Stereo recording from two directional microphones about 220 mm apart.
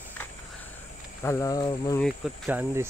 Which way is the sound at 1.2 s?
15° left (ahead or behind).